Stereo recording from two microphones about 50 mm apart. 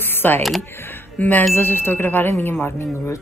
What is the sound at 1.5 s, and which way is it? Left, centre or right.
Speech, left.